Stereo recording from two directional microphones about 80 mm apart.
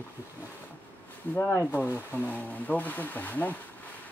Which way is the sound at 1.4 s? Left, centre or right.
Left.